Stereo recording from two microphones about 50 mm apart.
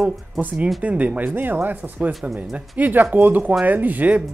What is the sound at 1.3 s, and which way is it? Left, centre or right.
Speech, right.